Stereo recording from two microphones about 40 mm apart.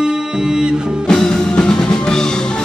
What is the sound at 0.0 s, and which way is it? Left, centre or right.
Music, centre.